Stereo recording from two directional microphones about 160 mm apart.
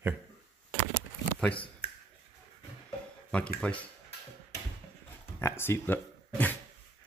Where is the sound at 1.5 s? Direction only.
35° left (ahead or behind).